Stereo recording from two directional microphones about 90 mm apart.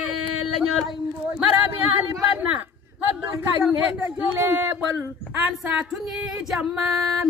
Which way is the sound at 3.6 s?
20° right (ahead or behind).